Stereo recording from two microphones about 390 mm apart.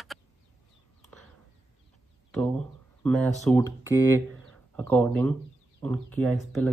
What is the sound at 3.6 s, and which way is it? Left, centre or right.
Speech, centre.